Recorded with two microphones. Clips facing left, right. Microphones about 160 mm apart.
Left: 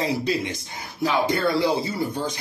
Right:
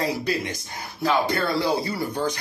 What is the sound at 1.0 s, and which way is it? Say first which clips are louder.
Speech: left 1 dB; 15° left (ahead or behind).